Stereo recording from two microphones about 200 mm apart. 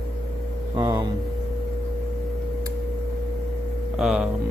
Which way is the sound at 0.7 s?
20° right (ahead or behind).